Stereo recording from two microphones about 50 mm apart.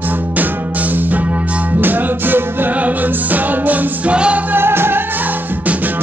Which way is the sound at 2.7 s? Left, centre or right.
Right.